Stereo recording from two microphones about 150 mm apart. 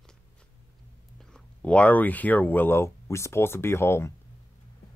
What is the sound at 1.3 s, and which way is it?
Speech, 10° left (ahead or behind).